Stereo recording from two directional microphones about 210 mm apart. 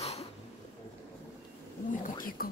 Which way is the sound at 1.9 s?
40° left (ahead or behind).